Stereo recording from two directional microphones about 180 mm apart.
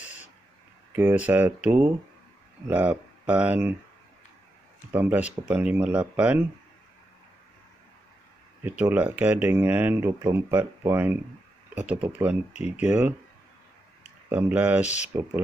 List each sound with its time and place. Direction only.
0.9 s speech: 10° right (ahead or behind)
4.9 s speech: 10° right (ahead or behind)
8.6 s speech: 10° right (ahead or behind)
10.6 s speech: 20° right (ahead or behind)
11.7 s speech: 5° right (ahead or behind)